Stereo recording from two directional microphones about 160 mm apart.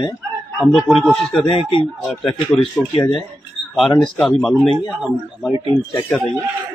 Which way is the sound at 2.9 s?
30° left (ahead or behind).